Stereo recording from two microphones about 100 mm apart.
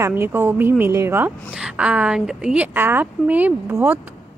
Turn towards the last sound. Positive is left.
turn(degrees=-20)  # may be behind; listen again after turning